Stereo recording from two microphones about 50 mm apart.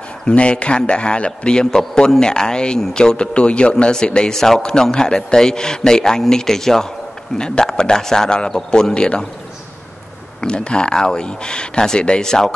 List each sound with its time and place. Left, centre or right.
0.2 s a man's voice: left
10.4 s a man's voice: centre